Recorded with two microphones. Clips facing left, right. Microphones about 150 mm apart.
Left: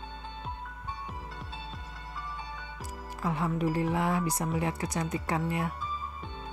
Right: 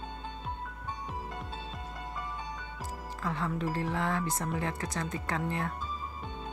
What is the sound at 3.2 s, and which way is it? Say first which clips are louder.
Speech: left 4 dB; 15° left (ahead or behind).